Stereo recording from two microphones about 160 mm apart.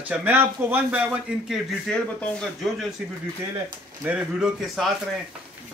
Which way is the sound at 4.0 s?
10° right (ahead or behind).